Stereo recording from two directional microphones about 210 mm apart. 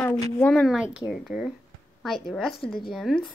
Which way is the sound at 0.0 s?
5° left (ahead or behind).